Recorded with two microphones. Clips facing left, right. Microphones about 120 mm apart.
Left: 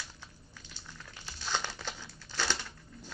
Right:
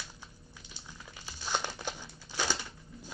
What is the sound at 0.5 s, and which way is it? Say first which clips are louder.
Crumpling: even; 15° right (ahead or behind).